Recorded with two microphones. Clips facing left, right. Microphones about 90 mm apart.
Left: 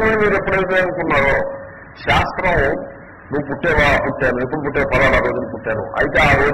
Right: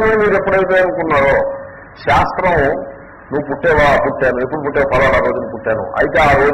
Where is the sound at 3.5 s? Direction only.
25° right (ahead or behind).